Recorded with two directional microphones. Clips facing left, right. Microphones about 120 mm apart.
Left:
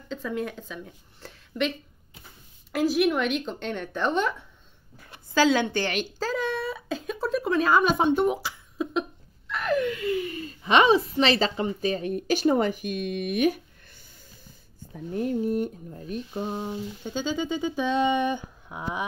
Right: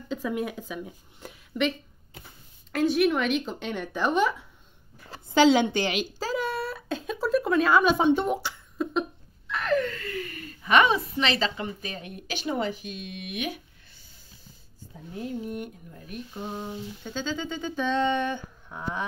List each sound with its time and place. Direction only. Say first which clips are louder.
0.1 s a woman's voice: right 1 dB; 10° right (ahead or behind)
2.7 s speech: even; 5° left (ahead or behind)
5.3 s speech: right 2 dB; 20° right (ahead or behind); by 7.9 s centre (ahead or behind)
8.0 s a sound: even; centre (ahead or behind)
9.5 s speech: left 1 dB; 5° left (ahead or behind); by 13.6 s 45° left (ahead or behind)
15.1 s speech: left 7 dB; 50° left (ahead or behind)
15.5 s speech: left 8 dB; 35° left (ahead or behind)
16.5 s speech: left 3 dB; 15° left (ahead or behind)